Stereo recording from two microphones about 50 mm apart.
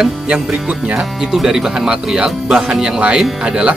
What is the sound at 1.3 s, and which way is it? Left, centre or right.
Speech, centre.